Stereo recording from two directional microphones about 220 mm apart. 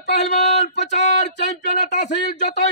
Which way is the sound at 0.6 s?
30° left (ahead or behind).